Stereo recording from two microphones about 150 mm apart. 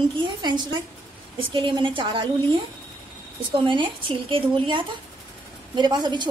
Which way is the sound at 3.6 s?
35° right (ahead or behind).